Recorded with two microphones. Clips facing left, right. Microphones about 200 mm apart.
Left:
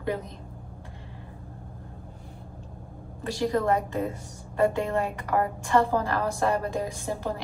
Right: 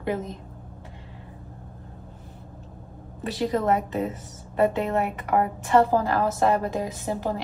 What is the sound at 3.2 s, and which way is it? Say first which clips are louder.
A woman's voice: right 1 dB; 20° right (ahead or behind).